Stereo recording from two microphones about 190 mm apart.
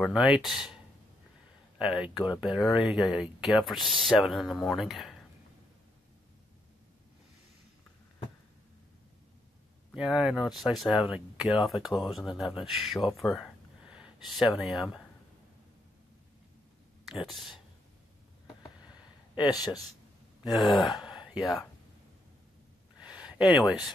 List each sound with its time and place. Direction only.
0.0 s speech: centre (ahead or behind)
1.8 s speech: 5° right (ahead or behind)
2.1 s speech: 20° left (ahead or behind)
2.4 s speech: centre (ahead or behind)
9.9 s speech: 5° right (ahead or behind)
18.6 s a sound: 20° left (ahead or behind)
20.5 s speech: centre (ahead or behind)
21.4 s speech: 20° left (ahead or behind)
22.9 s a sound: 5° right (ahead or behind)